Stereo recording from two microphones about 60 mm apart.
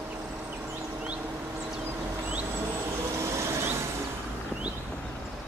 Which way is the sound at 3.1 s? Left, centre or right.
Right.